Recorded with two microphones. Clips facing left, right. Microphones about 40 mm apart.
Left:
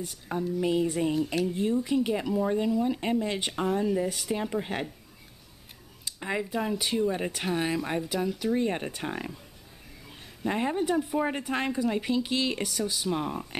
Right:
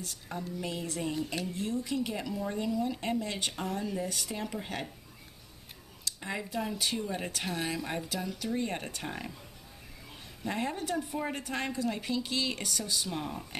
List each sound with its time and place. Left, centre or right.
0.0 s a woman's voice: centre
1.1 s speech: centre
1.5 s speech: left
6.0 s a woman's voice: centre
10.4 s a woman's voice: centre